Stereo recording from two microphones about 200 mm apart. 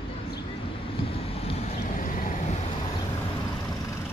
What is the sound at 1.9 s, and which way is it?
Vehicle, 40° left (ahead or behind).